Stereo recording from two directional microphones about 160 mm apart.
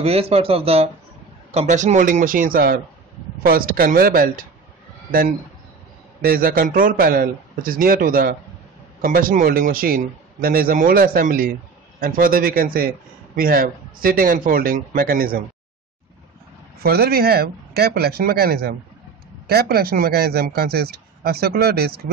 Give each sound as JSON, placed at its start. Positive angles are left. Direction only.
{"t": 0.0, "sound": "a man's voice", "side_deg": -40}
{"t": 6.2, "sound": "a man's voice", "side_deg": -65}
{"t": 16.8, "sound": "a man's voice", "side_deg": -75}